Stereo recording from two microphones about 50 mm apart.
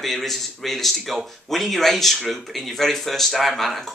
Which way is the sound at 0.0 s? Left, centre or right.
Centre.